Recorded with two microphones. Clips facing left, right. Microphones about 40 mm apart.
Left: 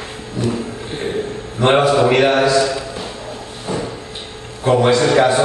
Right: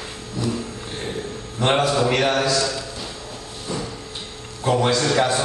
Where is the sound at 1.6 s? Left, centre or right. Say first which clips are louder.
Left 6 dB; centre.